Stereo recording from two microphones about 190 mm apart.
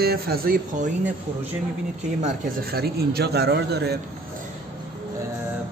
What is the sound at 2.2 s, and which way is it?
A man's voice, 50° right (ahead or behind).